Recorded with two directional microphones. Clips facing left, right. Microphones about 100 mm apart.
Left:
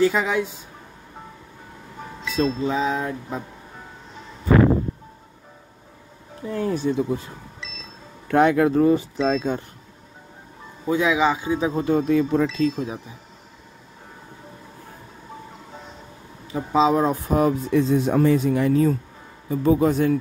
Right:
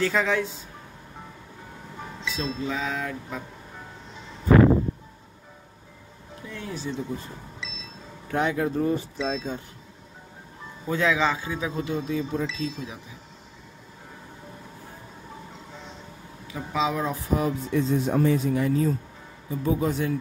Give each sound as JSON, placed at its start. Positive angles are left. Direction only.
{"t": 0.0, "sound": "a man's voice", "side_deg": 15}
{"t": 2.2, "sound": "a sound", "side_deg": 45}
{"t": 2.6, "sound": "speech", "side_deg": 25}
{"t": 6.4, "sound": "speech", "side_deg": 40}
{"t": 8.3, "sound": "speech", "side_deg": 65}
{"t": 9.2, "sound": "speech", "side_deg": 60}
{"t": 10.9, "sound": "a man's voice", "side_deg": 15}
{"t": 11.7, "sound": "speech", "side_deg": 45}
{"t": 12.4, "sound": "speech", "side_deg": 50}
{"t": 16.5, "sound": "speech", "side_deg": 35}
{"t": 17.5, "sound": "speech", "side_deg": 75}